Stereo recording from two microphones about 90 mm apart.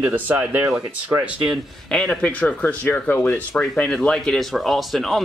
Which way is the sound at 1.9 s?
10° left (ahead or behind).